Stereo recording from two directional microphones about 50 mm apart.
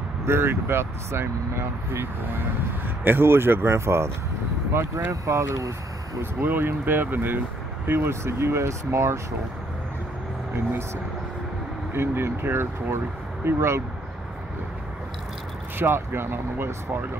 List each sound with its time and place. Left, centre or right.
0.2 s speech: right
4.7 s speech: right
6.4 s speech: right
11.9 s speech: right
15.8 s speech: right